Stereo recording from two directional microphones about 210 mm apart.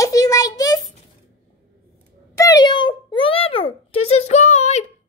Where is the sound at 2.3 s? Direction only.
20° left (ahead or behind).